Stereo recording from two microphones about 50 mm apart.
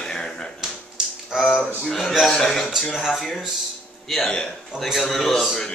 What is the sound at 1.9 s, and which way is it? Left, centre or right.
Speech, centre.